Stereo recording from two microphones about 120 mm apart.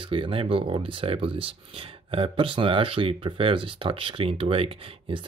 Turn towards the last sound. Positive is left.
turn(degrees=-50)  # may be behind; listen again after turning